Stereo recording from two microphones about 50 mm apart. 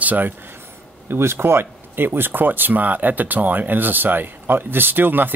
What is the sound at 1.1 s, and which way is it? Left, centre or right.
Speech, right.